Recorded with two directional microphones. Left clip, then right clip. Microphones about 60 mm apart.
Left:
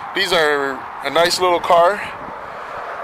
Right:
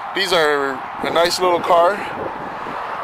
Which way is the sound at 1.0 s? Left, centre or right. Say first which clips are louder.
Left 1 dB; left.